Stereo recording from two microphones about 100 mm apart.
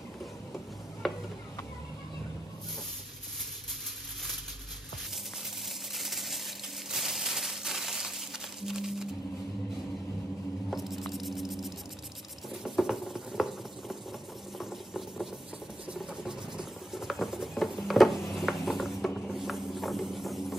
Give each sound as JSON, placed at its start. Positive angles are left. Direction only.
{"t": 1.0, "sound": "stir", "side_deg": 0}
{"t": 5.9, "sound": "a sound", "side_deg": 0}
{"t": 8.5, "sound": "music", "side_deg": -5}
{"t": 10.7, "sound": "scrape", "side_deg": 0}
{"t": 12.6, "sound": "a sound", "side_deg": -5}
{"t": 14.6, "sound": "engine", "side_deg": -5}
{"t": 15.9, "sound": "patter", "side_deg": -5}